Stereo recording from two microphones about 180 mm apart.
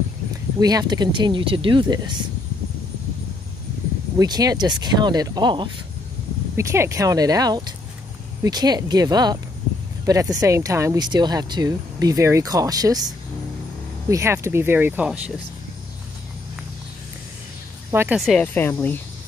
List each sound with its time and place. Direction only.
0.6 s speech: 20° right (ahead or behind)
4.2 s speech: 20° right (ahead or behind)
6.5 s speech: 15° right (ahead or behind)
17.9 s speech: 10° right (ahead or behind)
18.2 s speech: 5° left (ahead or behind)